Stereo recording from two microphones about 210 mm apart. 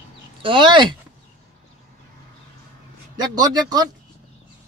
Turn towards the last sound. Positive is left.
turn(degrees=-20)  # may be behind; listen again after turning